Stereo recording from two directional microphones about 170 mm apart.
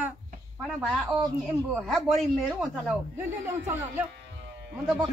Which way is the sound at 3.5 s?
15° right (ahead or behind).